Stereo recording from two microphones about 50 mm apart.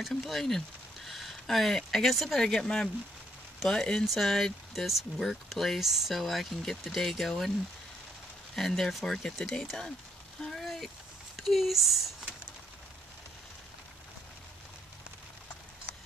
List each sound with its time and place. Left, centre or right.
0.1 s speech: centre
4.0 s speech: centre
8.5 s speech: centre
10.4 s a sound: centre
11.3 s speech: centre